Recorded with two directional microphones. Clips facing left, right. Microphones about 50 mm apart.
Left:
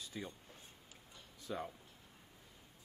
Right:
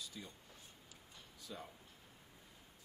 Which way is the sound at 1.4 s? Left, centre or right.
Left.